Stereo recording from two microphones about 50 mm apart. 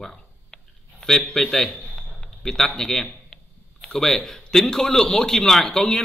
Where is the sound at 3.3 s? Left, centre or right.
Centre.